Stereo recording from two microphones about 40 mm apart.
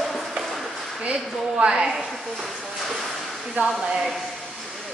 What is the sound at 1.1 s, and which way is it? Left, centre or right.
Speech, right.